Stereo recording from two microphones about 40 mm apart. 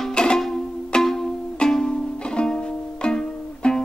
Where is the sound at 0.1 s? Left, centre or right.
Left.